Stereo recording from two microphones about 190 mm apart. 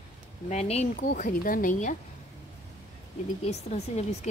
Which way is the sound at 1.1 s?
45° left (ahead or behind).